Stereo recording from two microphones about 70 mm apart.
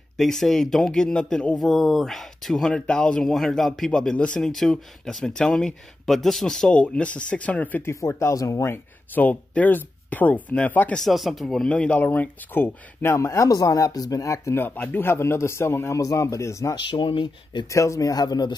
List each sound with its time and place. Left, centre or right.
0.2 s speech: centre
1.6 s speech: centre; by 7.8 s left
7.8 s speech: left
9.1 s speech: left
11.0 s speech: centre
11.7 s speech: centre
13.1 s speech: left
14.6 s a man's voice: left
16.0 s speech: left
16.7 s speech: left
17.6 s speech: left
18.1 s speech: left